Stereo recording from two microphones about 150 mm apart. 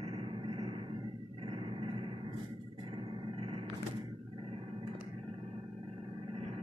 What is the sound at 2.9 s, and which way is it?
Music, 40° right (ahead or behind).